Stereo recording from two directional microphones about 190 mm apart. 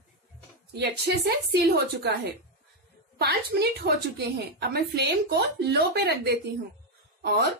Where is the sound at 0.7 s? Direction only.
60° right (ahead or behind).